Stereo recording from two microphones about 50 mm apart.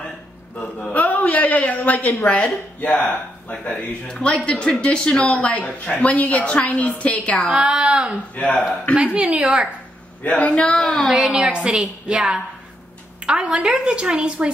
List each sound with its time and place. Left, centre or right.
0.6 s a sound: centre
0.9 s a woman's voice: left
4.1 s speech: left
7.4 s a woman's voice: centre
8.4 s speech: left
8.9 s a woman's voice: right
10.2 s speech: left
10.8 s a woman's voice: centre
11.1 s a woman's voice: centre